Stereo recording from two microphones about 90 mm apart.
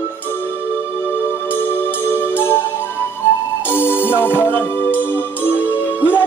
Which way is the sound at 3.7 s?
25° left (ahead or behind).